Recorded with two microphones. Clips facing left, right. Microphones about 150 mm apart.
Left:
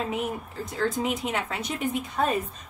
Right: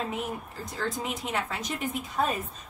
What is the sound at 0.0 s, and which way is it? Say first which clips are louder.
Speech: left 3 dB; centre (ahead or behind).